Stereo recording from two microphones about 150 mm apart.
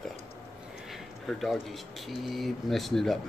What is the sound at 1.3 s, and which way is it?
Speech, centre (ahead or behind).